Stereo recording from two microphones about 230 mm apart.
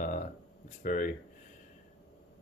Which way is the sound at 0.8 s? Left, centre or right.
Left.